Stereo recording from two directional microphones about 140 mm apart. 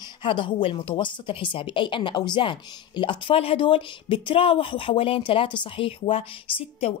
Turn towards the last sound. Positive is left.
turn(degrees=45)  # may be behind; listen again after turning